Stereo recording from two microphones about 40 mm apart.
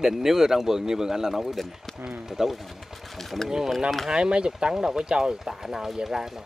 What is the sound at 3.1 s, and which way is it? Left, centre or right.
Speech, centre.